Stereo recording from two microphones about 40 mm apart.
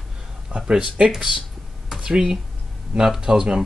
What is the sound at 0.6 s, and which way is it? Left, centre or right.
Speech, right.